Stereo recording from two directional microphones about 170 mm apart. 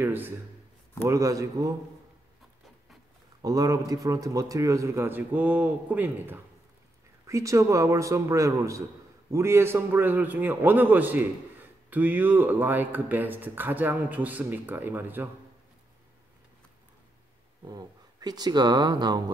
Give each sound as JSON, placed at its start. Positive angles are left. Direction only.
{"t": 0.0, "sound": "a man's voice", "side_deg": -10}
{"t": 3.4, "sound": "a man's voice", "side_deg": -20}
{"t": 17.6, "sound": "speech", "side_deg": -25}